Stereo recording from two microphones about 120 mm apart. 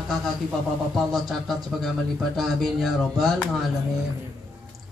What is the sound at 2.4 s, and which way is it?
A man's voice, centre (ahead or behind).